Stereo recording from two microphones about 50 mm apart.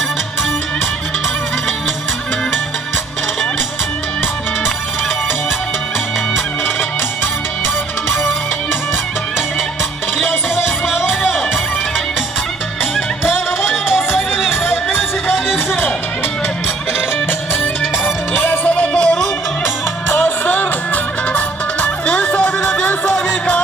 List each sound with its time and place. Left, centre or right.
10.5 s music: centre
13.9 s music: centre
18.3 s music: left
18.7 s music: left
20.1 s music: left